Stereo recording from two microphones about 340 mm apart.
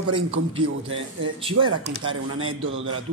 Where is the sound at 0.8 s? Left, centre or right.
Right.